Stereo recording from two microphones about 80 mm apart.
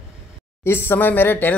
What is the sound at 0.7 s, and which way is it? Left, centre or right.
Speech, left.